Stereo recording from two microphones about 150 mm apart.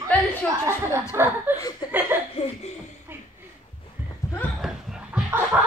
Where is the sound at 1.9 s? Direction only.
15° right (ahead or behind).